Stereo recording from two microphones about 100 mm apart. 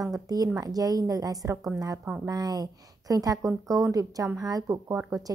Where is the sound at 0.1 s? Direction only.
35° right (ahead or behind).